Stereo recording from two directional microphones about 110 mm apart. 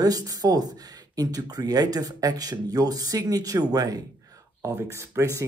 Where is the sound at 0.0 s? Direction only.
35° right (ahead or behind).